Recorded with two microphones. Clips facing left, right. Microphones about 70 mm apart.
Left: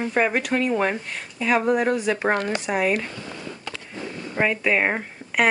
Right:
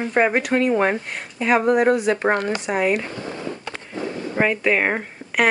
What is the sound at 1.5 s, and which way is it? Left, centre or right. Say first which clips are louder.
Speech: right 4 dB; centre.